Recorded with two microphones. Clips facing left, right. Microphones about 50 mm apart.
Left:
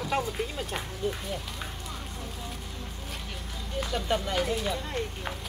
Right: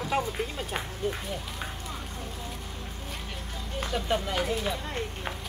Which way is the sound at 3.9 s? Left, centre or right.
Centre.